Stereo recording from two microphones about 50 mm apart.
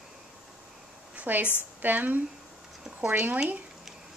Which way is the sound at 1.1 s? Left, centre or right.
Right.